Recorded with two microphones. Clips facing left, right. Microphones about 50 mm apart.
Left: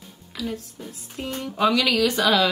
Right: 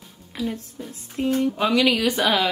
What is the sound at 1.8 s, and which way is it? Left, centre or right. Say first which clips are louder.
Speech: even; centre.